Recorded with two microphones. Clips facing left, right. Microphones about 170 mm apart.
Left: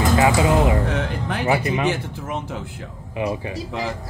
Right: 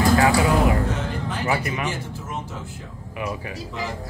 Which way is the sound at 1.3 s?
60° left (ahead or behind).